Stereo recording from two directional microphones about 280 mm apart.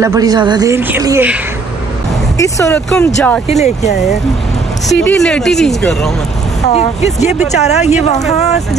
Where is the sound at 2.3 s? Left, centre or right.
Centre.